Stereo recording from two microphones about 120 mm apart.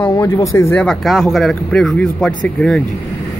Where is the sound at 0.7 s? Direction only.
5° left (ahead or behind).